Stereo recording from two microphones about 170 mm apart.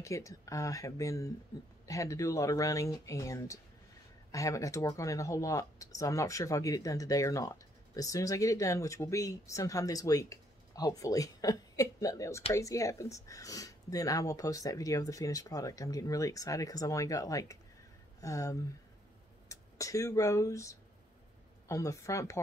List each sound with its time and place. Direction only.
0.0 s a woman's voice: 20° left (ahead or behind)